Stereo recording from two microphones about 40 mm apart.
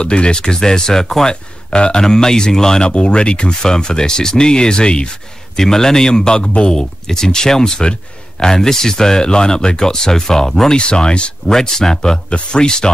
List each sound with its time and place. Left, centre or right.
0.0 s speech: left
1.3 s speech: left
10.8 s speech: left
11.4 s speech: centre